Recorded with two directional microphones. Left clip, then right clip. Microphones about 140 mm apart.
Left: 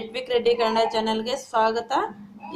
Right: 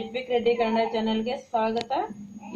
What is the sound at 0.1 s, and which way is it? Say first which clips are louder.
A woman's voice: left 3 dB; 25° left (ahead or behind).